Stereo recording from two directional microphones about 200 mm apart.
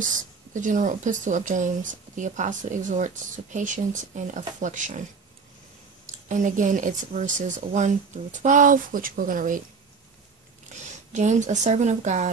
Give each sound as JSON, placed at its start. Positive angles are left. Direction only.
{"t": 0.5, "sound": "speech", "side_deg": -40}
{"t": 6.2, "sound": "speech", "side_deg": -40}
{"t": 10.7, "sound": "speech", "side_deg": -35}